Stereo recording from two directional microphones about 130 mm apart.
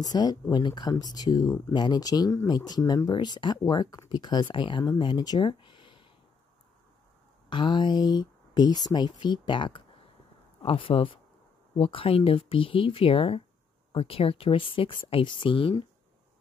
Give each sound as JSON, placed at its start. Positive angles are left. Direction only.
{"t": 0.0, "sound": "speech", "side_deg": 30}
{"t": 7.4, "sound": "speech", "side_deg": 35}